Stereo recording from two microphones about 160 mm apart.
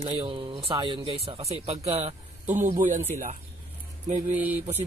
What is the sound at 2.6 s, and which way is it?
Speech, 55° right (ahead or behind).